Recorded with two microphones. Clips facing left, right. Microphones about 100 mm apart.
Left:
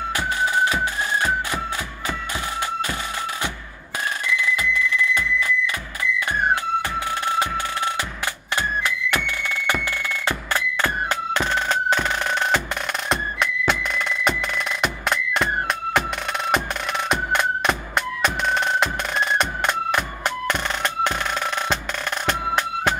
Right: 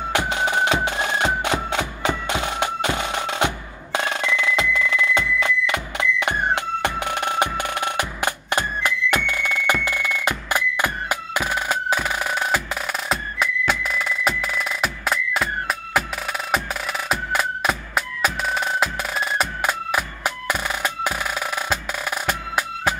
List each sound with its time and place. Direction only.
0.1 s music: 70° right (ahead or behind)
3.9 s music: 90° right
5.4 s music: 75° right (ahead or behind)
6.8 s music: 65° right (ahead or behind)
8.5 s music: 15° right (ahead or behind)
17.1 s music: 5° right (ahead or behind)
22.2 s music: 5° right (ahead or behind)